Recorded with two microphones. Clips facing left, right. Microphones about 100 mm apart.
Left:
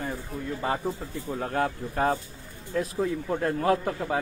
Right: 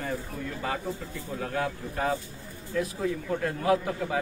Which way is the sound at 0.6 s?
30° left (ahead or behind).